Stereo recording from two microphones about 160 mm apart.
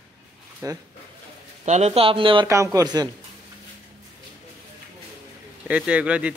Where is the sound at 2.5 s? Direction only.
20° right (ahead or behind).